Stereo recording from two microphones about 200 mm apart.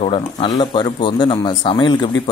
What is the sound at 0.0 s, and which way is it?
Speech, 25° left (ahead or behind).